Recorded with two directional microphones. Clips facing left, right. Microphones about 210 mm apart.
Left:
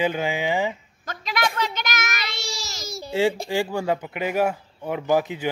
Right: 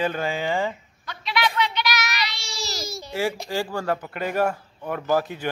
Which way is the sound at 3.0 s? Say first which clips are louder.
Left 5 dB; 25° left (ahead or behind).